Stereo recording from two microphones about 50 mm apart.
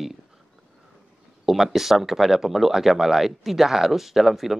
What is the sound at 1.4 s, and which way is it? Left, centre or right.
Speech, centre.